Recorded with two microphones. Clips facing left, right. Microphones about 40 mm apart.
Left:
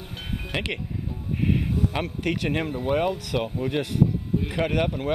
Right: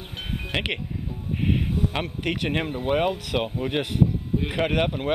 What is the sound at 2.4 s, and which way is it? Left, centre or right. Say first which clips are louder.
Speech: even; right.